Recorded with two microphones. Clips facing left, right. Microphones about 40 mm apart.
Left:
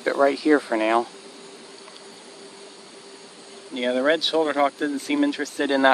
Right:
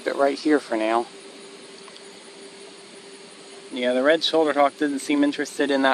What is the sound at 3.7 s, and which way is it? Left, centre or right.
Speech, centre.